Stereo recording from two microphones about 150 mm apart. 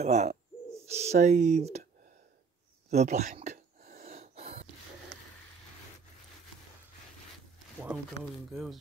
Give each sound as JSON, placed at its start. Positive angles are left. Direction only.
{"t": 0.0, "sound": "speech", "side_deg": -45}
{"t": 2.9, "sound": "speech", "side_deg": -50}
{"t": 3.5, "sound": "a sound", "side_deg": -75}
{"t": 4.1, "sound": "gasp", "side_deg": -45}
{"t": 7.8, "sound": "speech", "side_deg": -10}